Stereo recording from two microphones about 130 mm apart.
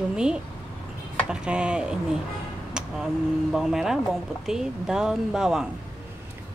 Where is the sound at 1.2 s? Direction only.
10° right (ahead or behind).